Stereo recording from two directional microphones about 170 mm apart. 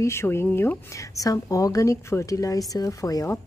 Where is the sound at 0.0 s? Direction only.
15° left (ahead or behind).